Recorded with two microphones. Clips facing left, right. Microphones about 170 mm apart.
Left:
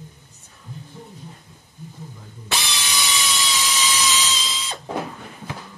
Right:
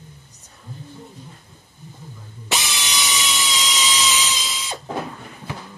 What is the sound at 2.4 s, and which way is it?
Drill, 20° right (ahead or behind).